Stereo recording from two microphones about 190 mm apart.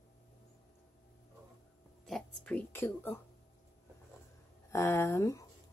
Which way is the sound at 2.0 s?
5° left (ahead or behind).